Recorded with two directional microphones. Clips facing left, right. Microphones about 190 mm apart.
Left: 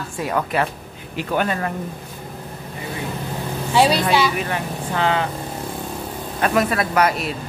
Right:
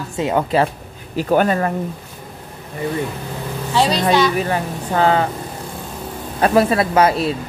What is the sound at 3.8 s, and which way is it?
Speech, 10° left (ahead or behind).